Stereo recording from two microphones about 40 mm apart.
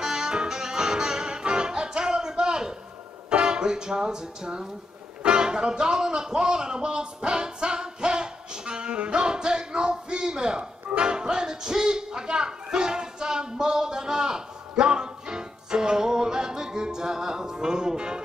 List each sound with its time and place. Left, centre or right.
0.0 s music: centre
3.3 s speech: right